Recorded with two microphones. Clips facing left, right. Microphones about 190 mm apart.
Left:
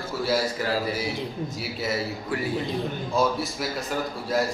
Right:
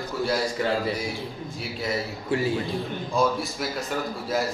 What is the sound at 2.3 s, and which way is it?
Speech, 25° right (ahead or behind).